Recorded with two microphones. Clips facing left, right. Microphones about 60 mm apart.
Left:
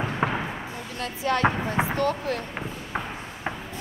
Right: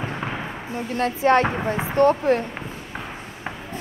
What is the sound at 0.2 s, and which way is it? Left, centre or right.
Basketball bounce, left.